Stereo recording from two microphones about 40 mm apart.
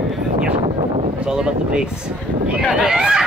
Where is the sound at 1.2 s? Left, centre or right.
Right.